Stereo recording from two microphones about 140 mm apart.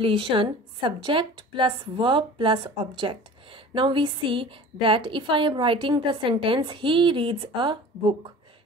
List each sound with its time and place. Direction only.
0.0 s a woman's voice: 40° right (ahead or behind)